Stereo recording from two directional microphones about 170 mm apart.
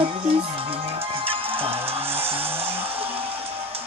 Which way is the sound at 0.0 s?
30° right (ahead or behind).